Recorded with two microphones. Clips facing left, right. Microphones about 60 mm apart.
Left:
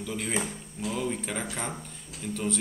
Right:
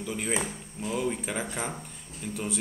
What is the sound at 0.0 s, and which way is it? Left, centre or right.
Speech, centre.